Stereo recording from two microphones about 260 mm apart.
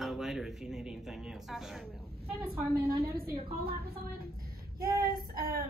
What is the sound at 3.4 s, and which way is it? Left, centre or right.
Speech, right.